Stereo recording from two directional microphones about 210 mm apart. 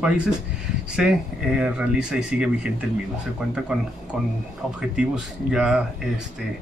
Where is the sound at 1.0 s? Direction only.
5° right (ahead or behind).